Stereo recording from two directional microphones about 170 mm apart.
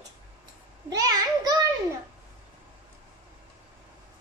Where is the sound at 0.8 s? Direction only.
20° right (ahead or behind).